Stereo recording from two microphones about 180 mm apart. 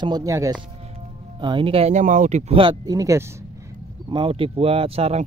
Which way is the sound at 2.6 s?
25° right (ahead or behind).